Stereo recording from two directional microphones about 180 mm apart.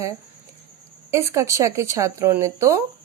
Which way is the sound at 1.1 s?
15° right (ahead or behind).